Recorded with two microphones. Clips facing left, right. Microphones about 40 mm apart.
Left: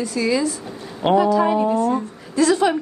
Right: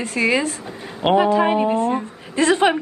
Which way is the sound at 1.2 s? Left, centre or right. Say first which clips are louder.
Even; right.